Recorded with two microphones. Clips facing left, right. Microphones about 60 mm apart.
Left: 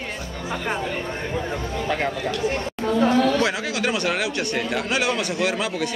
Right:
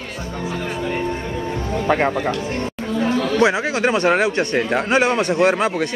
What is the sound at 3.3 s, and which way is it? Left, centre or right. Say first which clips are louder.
Speech: right 6 dB; right.